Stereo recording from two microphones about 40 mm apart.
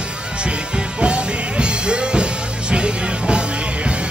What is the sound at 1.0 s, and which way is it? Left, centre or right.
Music, right.